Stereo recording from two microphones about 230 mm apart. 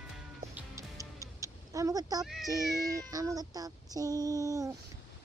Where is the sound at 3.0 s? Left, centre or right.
Centre.